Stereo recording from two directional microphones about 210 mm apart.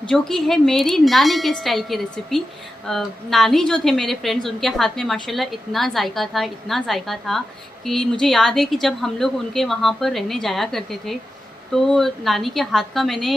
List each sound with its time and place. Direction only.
0.1 s a woman's voice: centre (ahead or behind)